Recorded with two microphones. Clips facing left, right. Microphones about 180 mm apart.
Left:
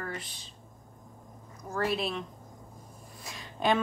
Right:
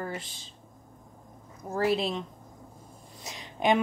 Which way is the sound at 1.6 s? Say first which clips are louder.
Right 4 dB; 30° right (ahead or behind).